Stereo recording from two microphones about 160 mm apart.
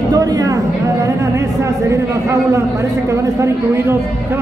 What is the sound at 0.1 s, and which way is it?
A man's voice, 20° right (ahead or behind).